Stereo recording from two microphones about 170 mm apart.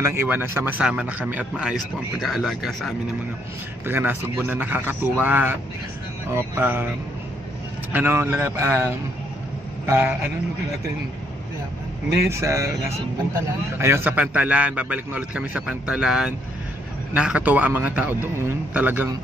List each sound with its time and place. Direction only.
0.0 s speech: 15° right (ahead or behind)
3.8 s speech: 10° right (ahead or behind)
7.9 s speech: 10° right (ahead or behind)
9.8 s speech: 10° right (ahead or behind)
12.3 s speech: 15° right (ahead or behind)